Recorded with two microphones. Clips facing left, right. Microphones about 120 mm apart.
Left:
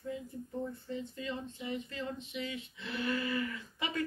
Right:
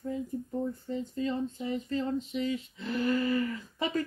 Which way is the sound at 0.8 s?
40° right (ahead or behind).